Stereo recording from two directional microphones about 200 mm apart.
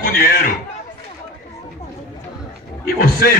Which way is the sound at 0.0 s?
45° left (ahead or behind).